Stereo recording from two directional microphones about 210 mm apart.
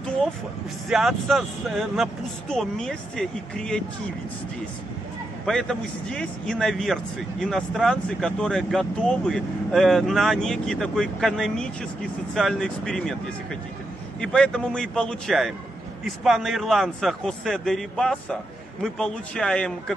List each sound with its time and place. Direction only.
0.8 s speech: centre (ahead or behind)
5.4 s speech: centre (ahead or behind)
14.2 s speech: 5° left (ahead or behind)